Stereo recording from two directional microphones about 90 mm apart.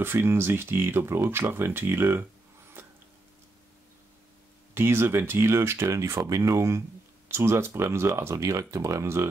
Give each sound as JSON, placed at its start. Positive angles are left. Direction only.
{"t": 0.0, "sound": "speech", "side_deg": -25}
{"t": 4.7, "sound": "speech", "side_deg": -25}